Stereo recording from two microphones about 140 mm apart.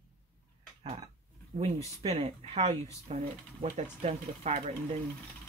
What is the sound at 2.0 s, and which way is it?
Speech, 50° right (ahead or behind).